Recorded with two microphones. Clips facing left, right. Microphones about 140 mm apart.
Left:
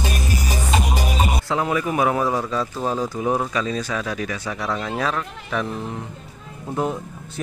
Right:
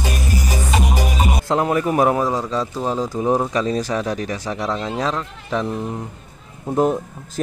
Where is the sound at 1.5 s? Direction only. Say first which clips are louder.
Right 6 dB; 45° right (ahead or behind).